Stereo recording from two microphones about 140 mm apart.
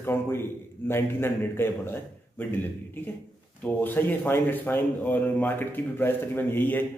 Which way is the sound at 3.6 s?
15° left (ahead or behind).